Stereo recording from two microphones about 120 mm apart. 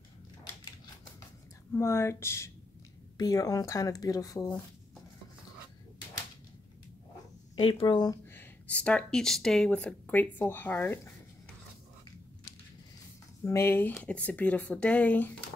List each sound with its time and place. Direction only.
1.7 s speech: 20° left (ahead or behind)
7.8 s speech: 35° left (ahead or behind)
8.3 s speech: 15° left (ahead or behind)
13.4 s speech: 20° left (ahead or behind)